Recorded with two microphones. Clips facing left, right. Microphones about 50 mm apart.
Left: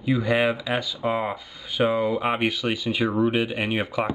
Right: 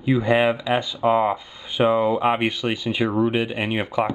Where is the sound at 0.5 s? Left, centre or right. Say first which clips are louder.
Right 4 dB; centre.